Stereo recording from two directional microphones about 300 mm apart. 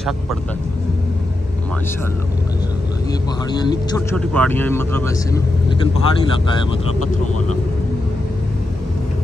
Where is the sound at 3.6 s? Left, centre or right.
Centre.